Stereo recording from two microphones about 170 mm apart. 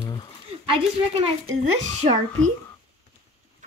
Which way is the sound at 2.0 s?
40° right (ahead or behind).